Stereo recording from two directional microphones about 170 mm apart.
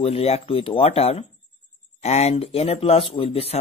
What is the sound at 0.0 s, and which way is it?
Speech, 35° left (ahead or behind).